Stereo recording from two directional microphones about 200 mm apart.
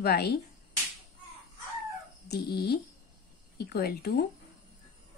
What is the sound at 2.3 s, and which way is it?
A woman's voice, 55° left (ahead or behind).